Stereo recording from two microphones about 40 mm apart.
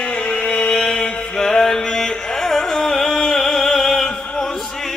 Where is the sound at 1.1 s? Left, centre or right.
Left.